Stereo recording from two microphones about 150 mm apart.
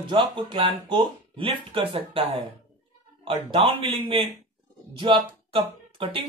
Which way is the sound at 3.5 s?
35° right (ahead or behind).